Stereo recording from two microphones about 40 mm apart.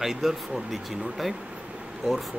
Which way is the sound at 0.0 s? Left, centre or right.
Centre.